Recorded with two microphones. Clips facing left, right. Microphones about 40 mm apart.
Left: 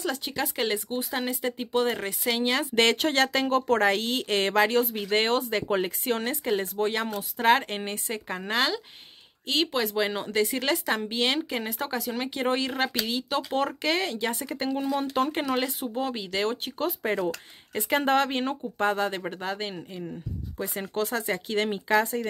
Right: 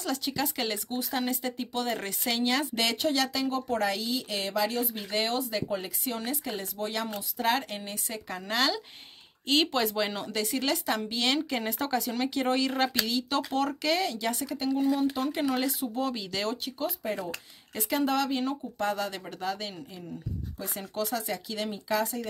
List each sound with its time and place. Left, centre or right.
0.0 s speech: left
2.7 s speech: left
16.6 s speech: left